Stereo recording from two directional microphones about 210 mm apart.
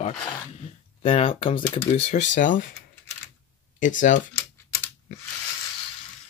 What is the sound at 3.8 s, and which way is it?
Speech, 40° left (ahead or behind).